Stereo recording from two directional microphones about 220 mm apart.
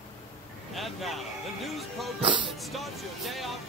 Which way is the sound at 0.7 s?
Centre (ahead or behind).